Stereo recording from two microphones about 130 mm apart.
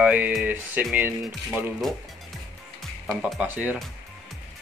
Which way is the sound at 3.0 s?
5° right (ahead or behind).